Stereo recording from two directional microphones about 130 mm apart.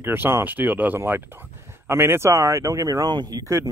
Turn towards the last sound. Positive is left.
turn(degrees=-25)  # may be behind; listen again after turning